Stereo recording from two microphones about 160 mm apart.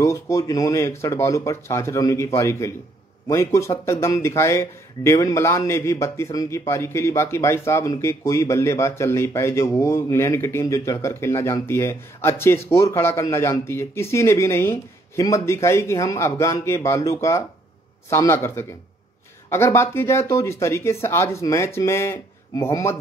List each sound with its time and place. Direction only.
0.0 s speech: 20° left (ahead or behind)